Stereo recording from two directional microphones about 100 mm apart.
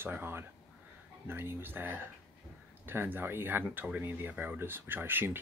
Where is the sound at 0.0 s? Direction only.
20° right (ahead or behind).